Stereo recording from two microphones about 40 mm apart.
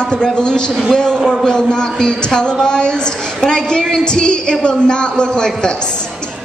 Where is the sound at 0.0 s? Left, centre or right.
Left.